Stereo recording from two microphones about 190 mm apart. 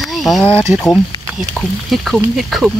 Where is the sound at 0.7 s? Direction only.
Centre (ahead or behind).